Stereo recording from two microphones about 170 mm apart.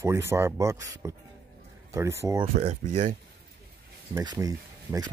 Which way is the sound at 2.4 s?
35° right (ahead or behind).